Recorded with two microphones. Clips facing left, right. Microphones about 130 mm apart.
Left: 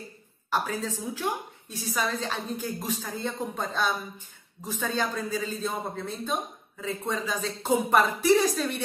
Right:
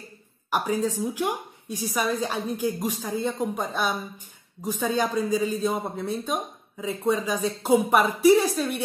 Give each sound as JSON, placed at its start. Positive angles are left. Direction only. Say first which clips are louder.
{"t": 0.5, "sound": "speech", "louder": "right 4 dB", "side_deg": -15}